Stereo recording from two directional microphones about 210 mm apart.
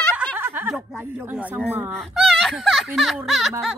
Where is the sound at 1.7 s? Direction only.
10° right (ahead or behind).